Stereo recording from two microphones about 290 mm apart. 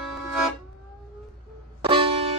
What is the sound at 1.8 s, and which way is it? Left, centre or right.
Music, centre.